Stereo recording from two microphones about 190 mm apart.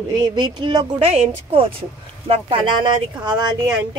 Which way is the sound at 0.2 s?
25° right (ahead or behind).